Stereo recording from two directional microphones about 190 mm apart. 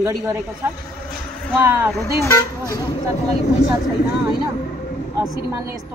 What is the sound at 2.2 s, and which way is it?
Speech, 20° left (ahead or behind).